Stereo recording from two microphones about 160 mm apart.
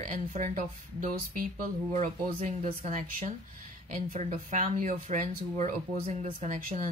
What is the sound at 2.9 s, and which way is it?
A woman's voice, 55° right (ahead or behind).